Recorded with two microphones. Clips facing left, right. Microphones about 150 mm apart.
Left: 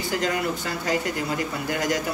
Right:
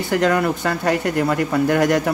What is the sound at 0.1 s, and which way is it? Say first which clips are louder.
Speech: right 8 dB; 60° right (ahead or behind).